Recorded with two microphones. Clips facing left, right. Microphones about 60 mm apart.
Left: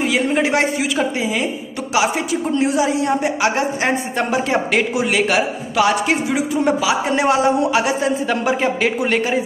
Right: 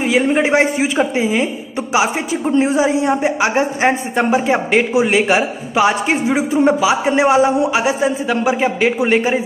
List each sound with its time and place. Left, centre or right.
0.0 s a woman's voice: centre
2.5 s a woman's voice: right